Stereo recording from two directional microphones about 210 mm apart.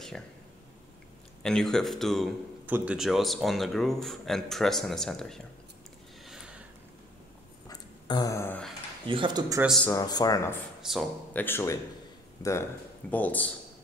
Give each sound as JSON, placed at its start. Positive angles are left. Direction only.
{"t": 1.4, "sound": "speech", "side_deg": 0}
{"t": 6.2, "sound": "a sound", "side_deg": -5}
{"t": 7.6, "sound": "a sound", "side_deg": 20}
{"t": 9.1, "sound": "speech", "side_deg": -20}
{"t": 9.8, "sound": "speech", "side_deg": 15}
{"t": 10.8, "sound": "speech", "side_deg": 0}